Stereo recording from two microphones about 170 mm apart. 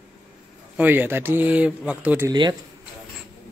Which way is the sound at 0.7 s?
10° right (ahead or behind).